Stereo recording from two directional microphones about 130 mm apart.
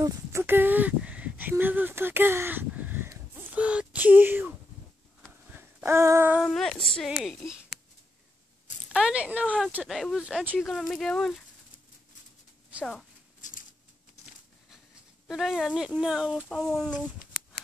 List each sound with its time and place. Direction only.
0.0 s speech: 20° right (ahead or behind)
5.5 s a sound: 15° right (ahead or behind)
6.3 s speech: centre (ahead or behind)
8.9 s speech: 5° right (ahead or behind)
9.8 s speech: centre (ahead or behind)
13.4 s a sound: 90° left
15.2 s speech: centre (ahead or behind)